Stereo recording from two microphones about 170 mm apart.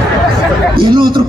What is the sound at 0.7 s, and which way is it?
Speech, 25° right (ahead or behind).